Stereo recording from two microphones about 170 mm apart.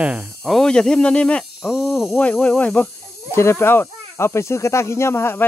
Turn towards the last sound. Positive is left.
turn(degrees=15)  # may be behind; listen again after turning